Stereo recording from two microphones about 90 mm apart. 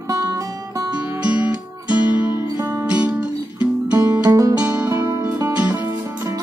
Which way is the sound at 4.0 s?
45° right (ahead or behind).